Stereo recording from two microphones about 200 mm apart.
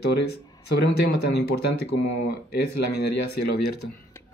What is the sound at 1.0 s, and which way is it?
Speech, 55° left (ahead or behind).